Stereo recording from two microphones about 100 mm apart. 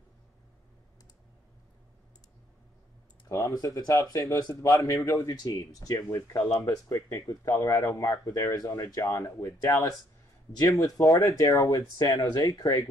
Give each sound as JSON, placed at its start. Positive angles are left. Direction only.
{"t": 3.3, "sound": "speech", "side_deg": 30}